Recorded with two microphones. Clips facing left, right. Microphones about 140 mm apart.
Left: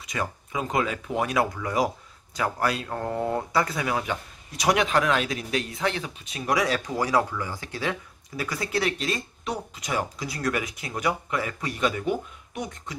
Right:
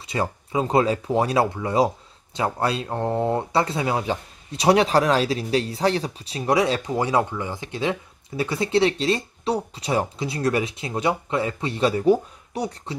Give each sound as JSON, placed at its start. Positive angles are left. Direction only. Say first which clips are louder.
{"t": 0.0, "sound": "speech", "louder": "right 5 dB", "side_deg": -30}